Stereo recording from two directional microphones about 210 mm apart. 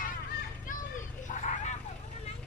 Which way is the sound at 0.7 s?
35° left (ahead or behind).